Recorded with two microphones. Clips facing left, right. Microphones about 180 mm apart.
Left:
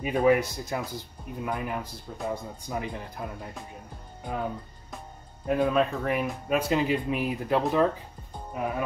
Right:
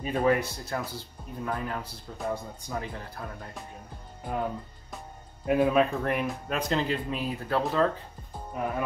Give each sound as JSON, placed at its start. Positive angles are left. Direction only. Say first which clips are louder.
{"t": 0.0, "sound": "speech", "louder": "left 3 dB", "side_deg": 10}
{"t": 5.5, "sound": "speech", "louder": "right 1 dB", "side_deg": -5}
{"t": 8.5, "sound": "speech", "louder": "left 1 dB", "side_deg": 5}